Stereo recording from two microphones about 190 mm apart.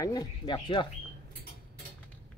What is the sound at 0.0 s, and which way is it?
Speech, 20° left (ahead or behind).